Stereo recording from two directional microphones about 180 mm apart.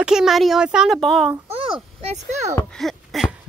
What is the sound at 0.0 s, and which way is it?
Speech, 5° right (ahead or behind).